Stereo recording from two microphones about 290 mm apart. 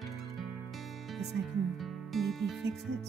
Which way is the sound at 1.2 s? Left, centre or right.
Centre.